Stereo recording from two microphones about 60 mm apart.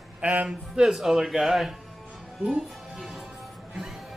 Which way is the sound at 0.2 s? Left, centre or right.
Right.